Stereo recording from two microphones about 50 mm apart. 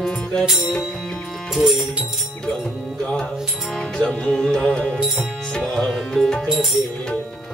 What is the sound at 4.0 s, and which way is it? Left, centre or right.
Music, centre.